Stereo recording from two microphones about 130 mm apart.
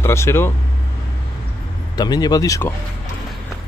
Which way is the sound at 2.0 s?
30° left (ahead or behind).